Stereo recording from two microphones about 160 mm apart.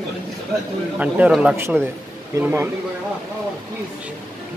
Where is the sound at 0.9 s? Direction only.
10° right (ahead or behind).